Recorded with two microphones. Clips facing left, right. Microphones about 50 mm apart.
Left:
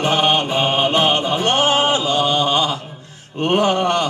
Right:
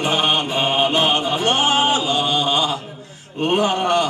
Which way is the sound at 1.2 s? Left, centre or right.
Left.